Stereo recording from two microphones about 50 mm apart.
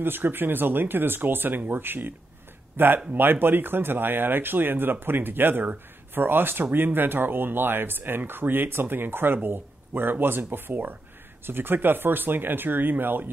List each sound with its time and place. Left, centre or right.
0.0 s speech: right